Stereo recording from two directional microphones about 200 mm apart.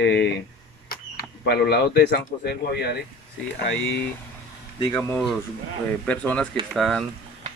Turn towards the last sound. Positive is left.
turn(degrees=0)  # may be behind; listen again after turning